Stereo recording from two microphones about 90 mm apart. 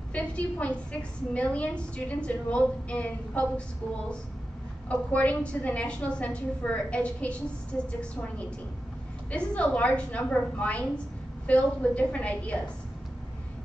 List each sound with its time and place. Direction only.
0.1 s a woman's voice: 15° left (ahead or behind)
4.8 s a woman's voice: 15° left (ahead or behind)